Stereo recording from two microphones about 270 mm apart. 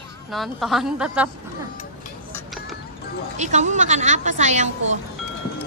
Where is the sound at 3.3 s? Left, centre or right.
Right.